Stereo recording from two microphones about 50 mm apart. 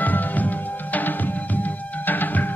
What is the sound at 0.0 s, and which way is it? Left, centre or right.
Music, left.